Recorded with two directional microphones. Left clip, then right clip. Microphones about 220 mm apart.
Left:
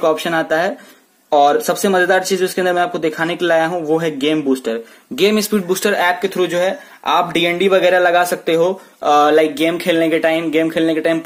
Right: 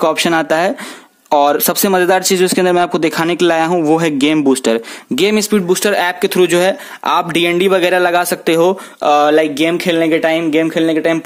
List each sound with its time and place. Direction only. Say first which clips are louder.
0.0 s speech: right 3 dB; 45° right (ahead or behind); by 11.1 s 25° right (ahead or behind)